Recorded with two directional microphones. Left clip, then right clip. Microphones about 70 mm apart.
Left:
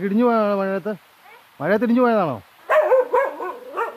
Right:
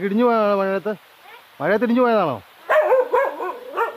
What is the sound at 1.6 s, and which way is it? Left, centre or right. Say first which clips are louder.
Dog: even; centre.